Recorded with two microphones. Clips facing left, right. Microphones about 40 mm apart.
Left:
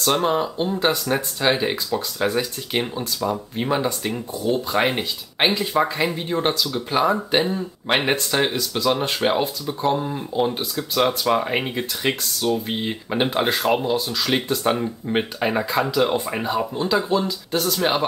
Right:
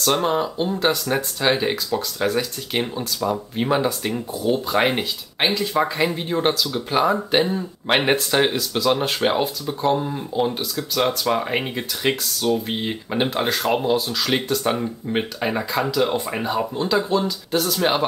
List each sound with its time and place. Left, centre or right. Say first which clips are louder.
0.0 s speech: even; centre
5.4 s speech: left 1 dB; centre
5.8 s speech: right 1 dB; centre
13.7 s speech: right 2 dB; centre